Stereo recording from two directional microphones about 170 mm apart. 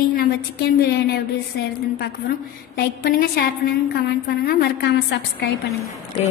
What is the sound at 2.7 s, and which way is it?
Speech, 65° left (ahead or behind).